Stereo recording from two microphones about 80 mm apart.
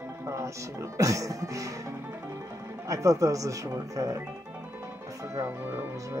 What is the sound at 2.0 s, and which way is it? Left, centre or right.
Music, right.